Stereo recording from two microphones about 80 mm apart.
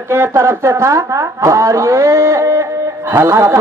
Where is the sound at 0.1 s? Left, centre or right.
Right.